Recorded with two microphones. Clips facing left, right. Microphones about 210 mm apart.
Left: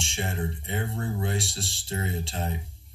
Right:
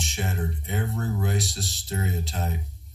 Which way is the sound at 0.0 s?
25° left (ahead or behind).